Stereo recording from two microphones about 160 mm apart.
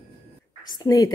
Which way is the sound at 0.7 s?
25° left (ahead or behind).